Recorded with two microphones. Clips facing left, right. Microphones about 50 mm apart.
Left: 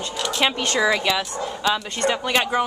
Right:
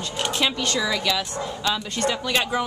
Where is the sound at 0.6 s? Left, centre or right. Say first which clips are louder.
Left 4 dB; left.